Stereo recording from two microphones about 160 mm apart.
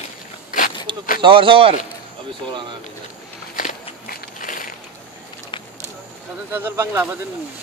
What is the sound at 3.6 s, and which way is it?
Walk, 60° left (ahead or behind).